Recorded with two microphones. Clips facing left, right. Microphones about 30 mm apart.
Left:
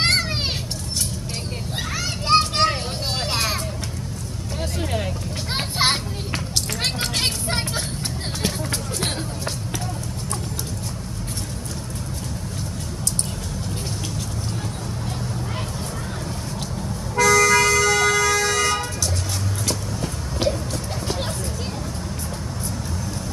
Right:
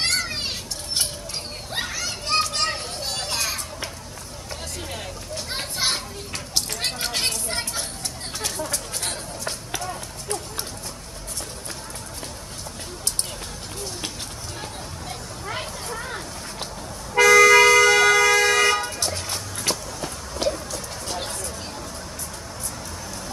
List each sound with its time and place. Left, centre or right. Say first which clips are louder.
0.0 s children playing: left 4 dB; left
2.0 s children playing: left 7 dB; centre
4.7 s vehicle: left 9 dB; centre
5.5 s children playing: left 5 dB; left
7.1 s vehicle: left 2 dB; centre
7.4 s vehicle: left 4 dB; left
8.4 s music: left 2 dB; left
17.2 s vehicle: right 3 dB; centre
20.3 s music: left 2 dB; centre